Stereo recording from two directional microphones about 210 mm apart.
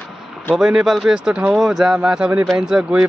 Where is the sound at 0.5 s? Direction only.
Centre (ahead or behind).